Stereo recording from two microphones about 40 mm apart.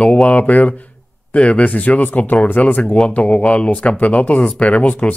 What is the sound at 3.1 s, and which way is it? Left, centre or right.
Speech, left.